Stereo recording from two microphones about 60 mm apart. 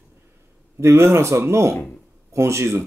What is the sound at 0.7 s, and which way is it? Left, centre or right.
Speech, right.